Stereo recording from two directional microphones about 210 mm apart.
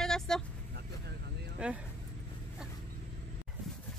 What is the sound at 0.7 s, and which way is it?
Vehicle, 50° right (ahead or behind).